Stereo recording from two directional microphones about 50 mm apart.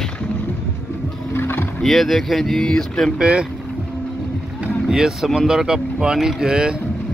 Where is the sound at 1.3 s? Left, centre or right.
Left.